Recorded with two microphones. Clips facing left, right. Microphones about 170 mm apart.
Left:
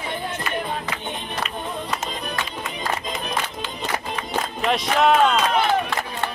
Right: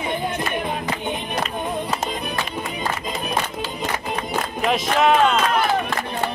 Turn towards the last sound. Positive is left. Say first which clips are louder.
# even
turn(degrees=0)  # may be behind; listen again after turning